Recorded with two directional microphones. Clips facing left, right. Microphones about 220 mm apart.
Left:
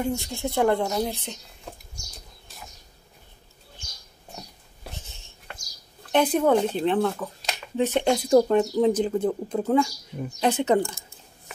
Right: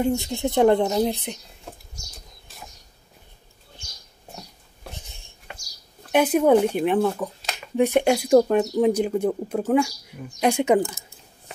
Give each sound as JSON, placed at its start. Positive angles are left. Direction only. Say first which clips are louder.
{"t": 0.0, "sound": "a woman's voice", "louder": "right 5 dB", "side_deg": -20}
{"t": 4.9, "sound": "a sound", "louder": "even", "side_deg": -15}
{"t": 6.1, "sound": "speech", "louder": "right 3 dB", "side_deg": -10}